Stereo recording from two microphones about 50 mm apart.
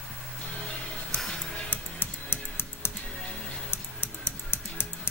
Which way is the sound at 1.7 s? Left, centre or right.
Left.